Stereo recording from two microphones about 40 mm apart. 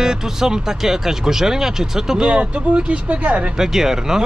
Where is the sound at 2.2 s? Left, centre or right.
Right.